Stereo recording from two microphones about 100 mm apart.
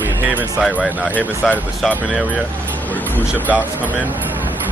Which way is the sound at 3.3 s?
15° right (ahead or behind).